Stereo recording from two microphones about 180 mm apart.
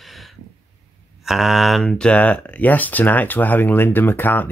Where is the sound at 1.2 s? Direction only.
Centre (ahead or behind).